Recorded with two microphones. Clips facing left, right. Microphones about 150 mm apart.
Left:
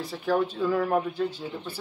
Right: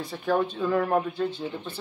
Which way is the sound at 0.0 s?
5° left (ahead or behind).